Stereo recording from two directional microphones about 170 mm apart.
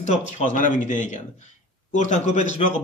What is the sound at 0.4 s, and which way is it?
A man's voice, 50° left (ahead or behind).